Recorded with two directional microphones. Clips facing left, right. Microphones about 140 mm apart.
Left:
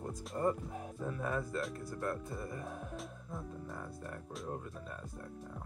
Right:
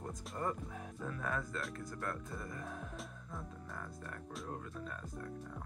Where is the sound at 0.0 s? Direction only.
Centre (ahead or behind).